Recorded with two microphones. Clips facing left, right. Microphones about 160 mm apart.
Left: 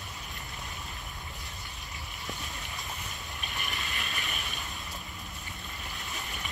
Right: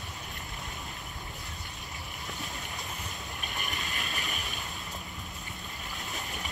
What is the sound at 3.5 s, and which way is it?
Vehicle, 40° right (ahead or behind).